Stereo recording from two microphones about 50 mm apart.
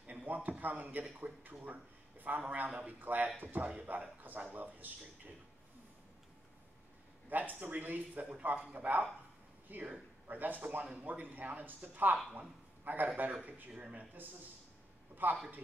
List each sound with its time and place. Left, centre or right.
0.0 s a man's voice: right
2.7 s speech: right
3.0 s speech: right
7.2 s a man's voice: right
15.2 s speech: right